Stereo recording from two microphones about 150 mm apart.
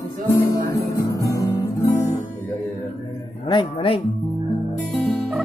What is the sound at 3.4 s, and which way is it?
Speech, 35° left (ahead or behind).